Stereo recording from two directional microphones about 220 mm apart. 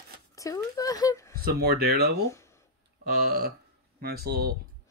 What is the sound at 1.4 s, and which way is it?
Speech, 45° right (ahead or behind).